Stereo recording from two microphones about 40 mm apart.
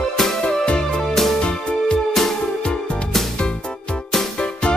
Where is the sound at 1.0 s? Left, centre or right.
Centre.